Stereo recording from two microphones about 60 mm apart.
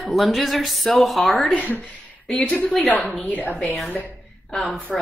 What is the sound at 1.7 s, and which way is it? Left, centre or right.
Speech, left.